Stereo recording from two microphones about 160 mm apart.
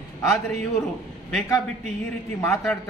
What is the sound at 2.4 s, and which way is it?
Speech, 10° left (ahead or behind).